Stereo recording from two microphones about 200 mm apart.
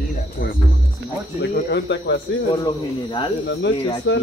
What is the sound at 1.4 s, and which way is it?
Speech, 60° left (ahead or behind).